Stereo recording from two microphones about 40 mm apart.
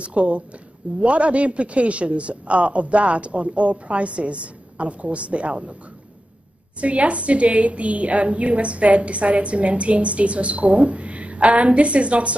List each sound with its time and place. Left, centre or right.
0.0 s a woman's voice: right
6.8 s a woman's voice: right